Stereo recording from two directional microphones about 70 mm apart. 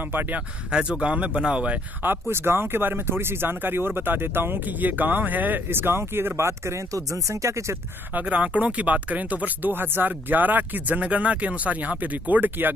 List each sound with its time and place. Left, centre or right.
0.1 s speech: right
0.7 s speech: centre
2.0 s speech: right
8.1 s speech: right